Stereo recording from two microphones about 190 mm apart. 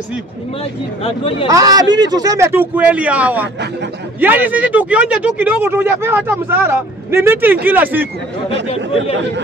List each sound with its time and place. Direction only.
1.0 s speech: 30° left (ahead or behind)
1.5 s speech: 20° right (ahead or behind)
8.6 s speech: 30° left (ahead or behind)